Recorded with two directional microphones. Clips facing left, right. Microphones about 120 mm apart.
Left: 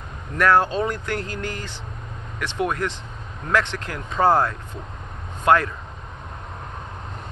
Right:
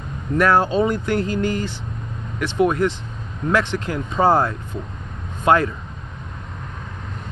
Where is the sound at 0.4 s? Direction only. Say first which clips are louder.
Right 2 dB; 15° right (ahead or behind).